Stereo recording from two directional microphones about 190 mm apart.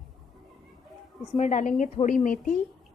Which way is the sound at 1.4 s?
40° left (ahead or behind).